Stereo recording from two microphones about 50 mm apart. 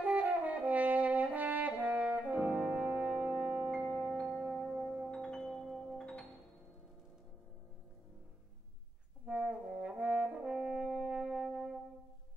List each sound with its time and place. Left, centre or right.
0.0 s brass instrument: right
2.9 s music: right
4.9 s music: centre
5.5 s music: centre
5.9 s music: centre
9.2 s brass instrument: right